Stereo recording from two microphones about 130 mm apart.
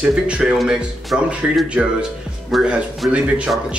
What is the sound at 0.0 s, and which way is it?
Speech, 10° right (ahead or behind).